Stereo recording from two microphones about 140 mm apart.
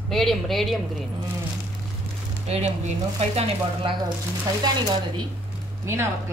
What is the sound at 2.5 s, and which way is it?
Speech, 50° right (ahead or behind).